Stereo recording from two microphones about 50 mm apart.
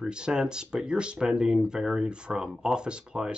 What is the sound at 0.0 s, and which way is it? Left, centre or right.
Speech, centre.